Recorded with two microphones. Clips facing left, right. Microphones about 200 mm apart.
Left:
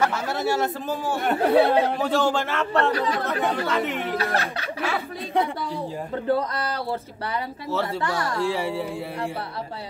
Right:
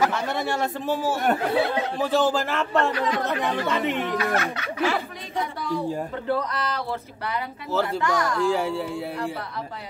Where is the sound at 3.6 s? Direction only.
Centre (ahead or behind).